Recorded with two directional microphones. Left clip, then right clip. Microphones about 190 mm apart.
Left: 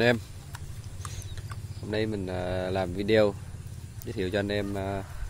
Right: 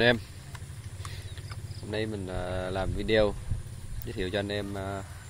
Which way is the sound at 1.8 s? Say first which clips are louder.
Left 3 dB; 20° left (ahead or behind).